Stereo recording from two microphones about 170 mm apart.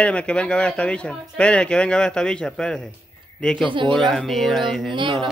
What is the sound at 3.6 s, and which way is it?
Speech, 30° right (ahead or behind).